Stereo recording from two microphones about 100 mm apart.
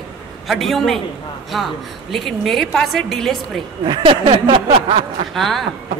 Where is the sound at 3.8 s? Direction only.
55° right (ahead or behind).